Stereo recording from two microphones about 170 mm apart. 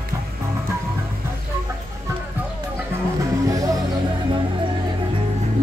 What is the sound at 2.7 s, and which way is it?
Music, 20° right (ahead or behind).